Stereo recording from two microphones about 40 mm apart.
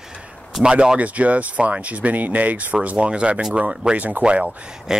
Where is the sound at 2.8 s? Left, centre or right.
Right.